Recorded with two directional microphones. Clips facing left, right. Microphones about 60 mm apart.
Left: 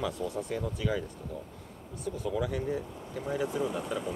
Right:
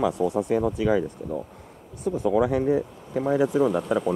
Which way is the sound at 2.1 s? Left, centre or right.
Right.